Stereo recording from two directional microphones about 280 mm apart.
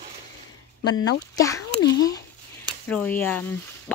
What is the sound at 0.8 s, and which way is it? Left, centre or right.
Speech, left.